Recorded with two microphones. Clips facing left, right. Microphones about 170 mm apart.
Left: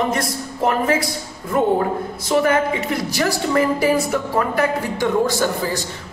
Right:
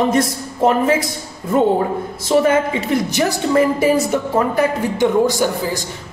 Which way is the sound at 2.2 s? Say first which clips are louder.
Right 3 dB; 25° right (ahead or behind).